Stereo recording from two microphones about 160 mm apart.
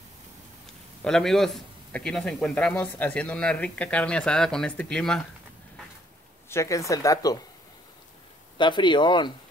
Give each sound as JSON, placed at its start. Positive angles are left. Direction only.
{"t": 1.0, "sound": "speech", "side_deg": 0}
{"t": 6.5, "sound": "speech", "side_deg": 20}
{"t": 8.5, "sound": "speech", "side_deg": 30}